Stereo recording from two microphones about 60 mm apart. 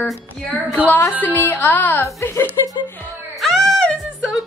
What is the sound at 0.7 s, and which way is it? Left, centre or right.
Speech, left.